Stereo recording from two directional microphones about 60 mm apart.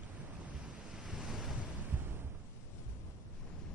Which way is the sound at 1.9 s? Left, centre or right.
Right.